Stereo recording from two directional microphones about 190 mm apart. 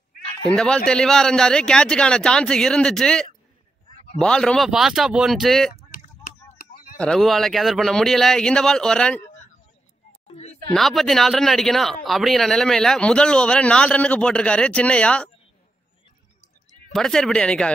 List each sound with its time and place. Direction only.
0.5 s a man's voice: 5° left (ahead or behind)
6.6 s a sound: 45° left (ahead or behind)
7.0 s a man's voice: centre (ahead or behind)
10.2 s a sound: 35° left (ahead or behind)
10.7 s a man's voice: centre (ahead or behind)
16.9 s a man's voice: centre (ahead or behind)